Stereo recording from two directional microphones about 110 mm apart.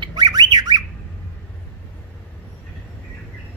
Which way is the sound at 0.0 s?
40° right (ahead or behind).